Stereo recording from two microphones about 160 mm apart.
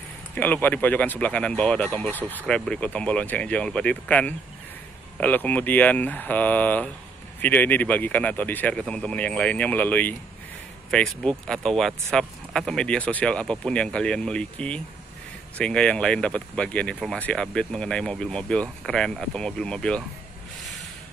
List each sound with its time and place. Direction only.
0.3 s speech: 10° left (ahead or behind)